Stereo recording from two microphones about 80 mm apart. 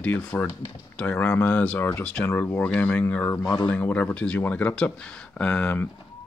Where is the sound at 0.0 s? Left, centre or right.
Centre.